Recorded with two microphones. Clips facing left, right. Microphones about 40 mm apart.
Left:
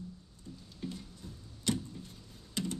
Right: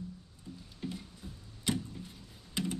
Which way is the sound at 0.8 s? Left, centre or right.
Right.